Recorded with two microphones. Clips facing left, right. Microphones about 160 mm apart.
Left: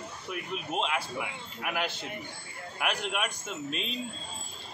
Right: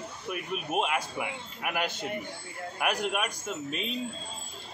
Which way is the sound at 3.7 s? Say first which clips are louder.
Even; centre (ahead or behind).